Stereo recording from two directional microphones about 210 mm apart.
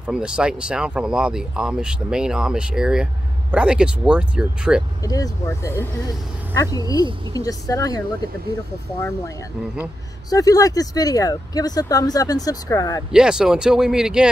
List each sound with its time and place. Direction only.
0.0 s speech: 5° right (ahead or behind)
5.0 s speech: 15° left (ahead or behind)
10.3 s speech: 15° left (ahead or behind)
13.1 s speech: 5° right (ahead or behind)